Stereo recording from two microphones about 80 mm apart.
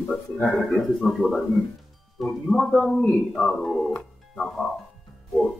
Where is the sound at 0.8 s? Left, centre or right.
Centre.